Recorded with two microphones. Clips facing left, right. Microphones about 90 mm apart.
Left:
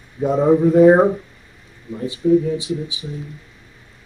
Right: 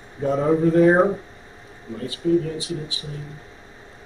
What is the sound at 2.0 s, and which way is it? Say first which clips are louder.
Speech: left 5 dB; 20° left (ahead or behind).